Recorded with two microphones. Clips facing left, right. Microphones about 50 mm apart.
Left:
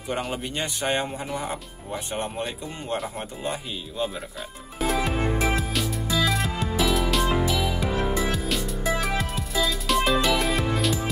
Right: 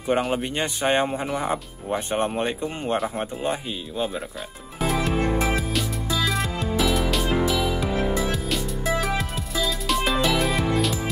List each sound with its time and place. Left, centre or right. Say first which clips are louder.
0.3 s speech: right 4 dB; right
3.2 s speech: right 4 dB; centre
4.7 s music: right 1 dB; centre